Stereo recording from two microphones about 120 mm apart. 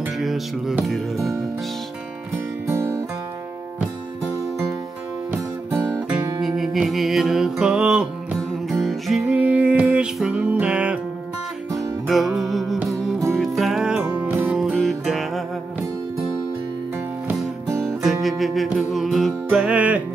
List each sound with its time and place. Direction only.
0.2 s music: centre (ahead or behind)
0.8 s speech: centre (ahead or behind)
2.6 s music: 20° right (ahead or behind)
5.8 s music: 10° right (ahead or behind)
14.6 s music: centre (ahead or behind)
17.8 s music: centre (ahead or behind)